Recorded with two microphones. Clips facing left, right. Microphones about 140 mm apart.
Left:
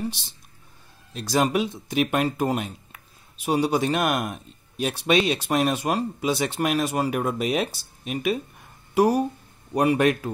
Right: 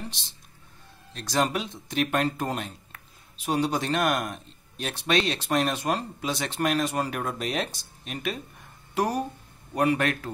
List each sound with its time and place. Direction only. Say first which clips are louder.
1.1 s speech: left 4 dB; 10° left (ahead or behind)